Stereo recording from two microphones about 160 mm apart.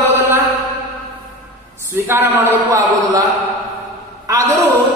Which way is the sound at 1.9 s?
15° right (ahead or behind).